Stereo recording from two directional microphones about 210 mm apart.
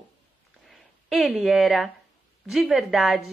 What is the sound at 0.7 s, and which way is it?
A woman's voice, centre (ahead or behind).